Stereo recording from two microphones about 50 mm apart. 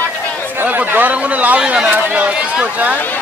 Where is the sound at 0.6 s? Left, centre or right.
Right.